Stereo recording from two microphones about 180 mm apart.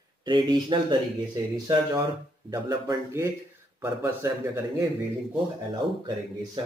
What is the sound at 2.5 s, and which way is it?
A man's voice, 20° right (ahead or behind).